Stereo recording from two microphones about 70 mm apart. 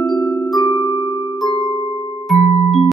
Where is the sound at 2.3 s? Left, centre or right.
Centre.